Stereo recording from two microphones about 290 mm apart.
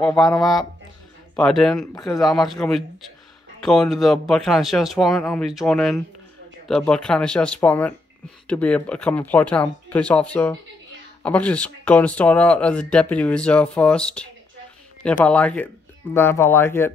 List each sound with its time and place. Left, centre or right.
0.0 s speech: centre